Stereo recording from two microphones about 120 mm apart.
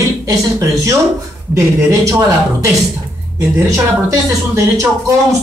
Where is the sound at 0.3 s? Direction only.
25° right (ahead or behind).